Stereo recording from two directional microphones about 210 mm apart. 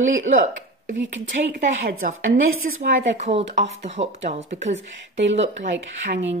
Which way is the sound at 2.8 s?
30° right (ahead or behind).